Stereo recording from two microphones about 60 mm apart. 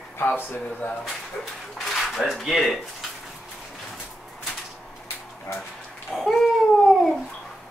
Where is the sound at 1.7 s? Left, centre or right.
Centre.